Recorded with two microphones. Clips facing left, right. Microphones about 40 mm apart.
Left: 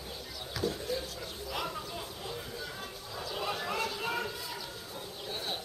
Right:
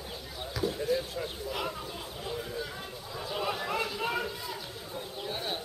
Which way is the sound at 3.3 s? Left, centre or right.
Centre.